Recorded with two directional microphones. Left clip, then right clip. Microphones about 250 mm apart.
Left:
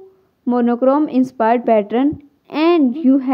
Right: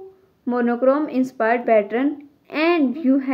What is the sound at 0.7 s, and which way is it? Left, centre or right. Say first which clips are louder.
Speech: left 3 dB; left.